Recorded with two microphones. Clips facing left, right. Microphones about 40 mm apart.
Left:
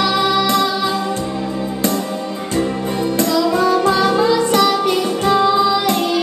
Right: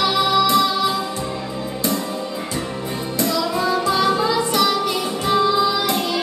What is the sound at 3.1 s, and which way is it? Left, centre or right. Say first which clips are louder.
Music: left 4 dB; left.